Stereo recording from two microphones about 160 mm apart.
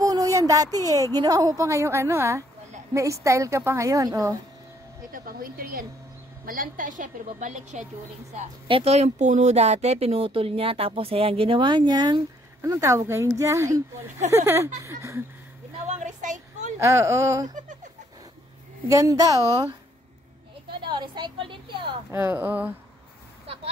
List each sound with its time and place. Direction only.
0.0 s a woman's voice: 20° right (ahead or behind)
5.1 s a woman's voice: 65° right (ahead or behind); by 15.2 s 15° right (ahead or behind)
15.9 s a sound: 50° right (ahead or behind)
16.7 s speech: 20° right (ahead or behind)
18.9 s a woman's voice: 20° right (ahead or behind)
20.8 s a woman's voice: 30° right (ahead or behind)
22.1 s speech: 15° right (ahead or behind)